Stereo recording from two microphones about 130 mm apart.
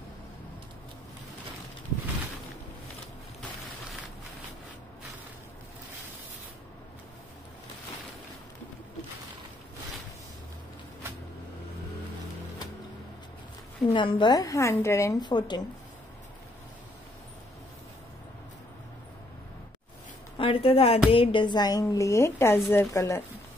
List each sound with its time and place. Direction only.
13.9 s speech: 40° left (ahead or behind); by 15.1 s 20° left (ahead or behind)
15.1 s speech: 35° left (ahead or behind)
20.3 s a woman's voice: 45° left (ahead or behind); by 23.2 s 20° left (ahead or behind)